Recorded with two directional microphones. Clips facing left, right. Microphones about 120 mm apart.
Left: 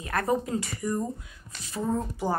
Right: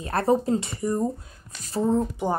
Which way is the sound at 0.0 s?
30° right (ahead or behind).